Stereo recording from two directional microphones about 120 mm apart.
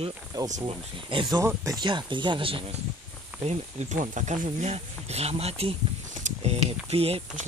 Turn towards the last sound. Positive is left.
turn(degrees=-55)  # may be behind; listen again after turning